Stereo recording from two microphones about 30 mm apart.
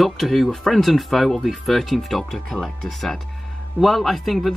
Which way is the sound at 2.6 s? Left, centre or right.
Centre.